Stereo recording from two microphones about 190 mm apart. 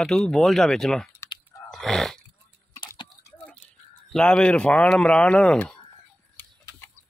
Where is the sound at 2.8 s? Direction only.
25° left (ahead or behind).